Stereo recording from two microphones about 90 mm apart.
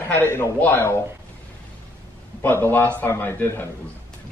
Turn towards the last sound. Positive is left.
turn(degrees=25)  # may be behind; listen again after turning